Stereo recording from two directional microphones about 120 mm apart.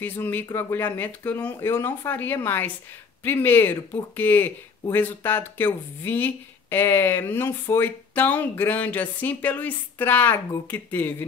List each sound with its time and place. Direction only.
0.0 s speech: 15° left (ahead or behind)